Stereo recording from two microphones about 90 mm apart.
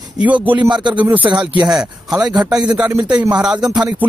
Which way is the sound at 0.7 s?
60° right (ahead or behind).